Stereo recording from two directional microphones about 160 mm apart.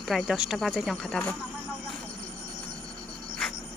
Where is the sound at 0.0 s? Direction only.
Centre (ahead or behind).